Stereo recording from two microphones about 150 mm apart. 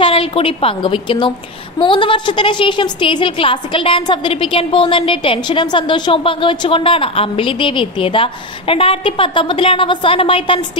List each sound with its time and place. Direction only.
0.0 s a woman's voice: 35° left (ahead or behind)